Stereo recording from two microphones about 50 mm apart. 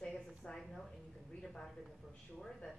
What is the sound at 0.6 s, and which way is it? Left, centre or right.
A woman's voice, centre.